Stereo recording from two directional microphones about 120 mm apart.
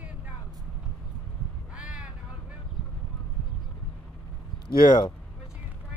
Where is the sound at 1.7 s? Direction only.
10° right (ahead or behind).